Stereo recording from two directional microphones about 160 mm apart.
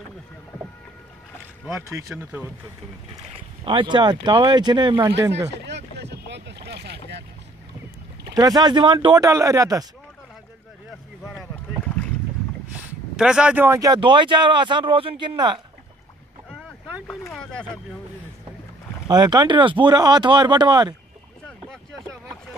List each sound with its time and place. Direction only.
1.8 s speech: 10° right (ahead or behind)
3.6 s speech: 30° right (ahead or behind)
5.7 s boat: 90° right
8.4 s speech: 25° right (ahead or behind)
11.2 s a sound: 5° left (ahead or behind)
12.7 s speech: 5° right (ahead or behind); by 15.6 s 30° right (ahead or behind)
17.3 s boat: 5° left (ahead or behind)
19.0 s speech: 25° right (ahead or behind)